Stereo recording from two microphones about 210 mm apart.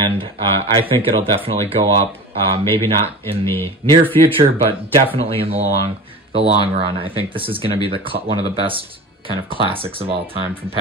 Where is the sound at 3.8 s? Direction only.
25° right (ahead or behind).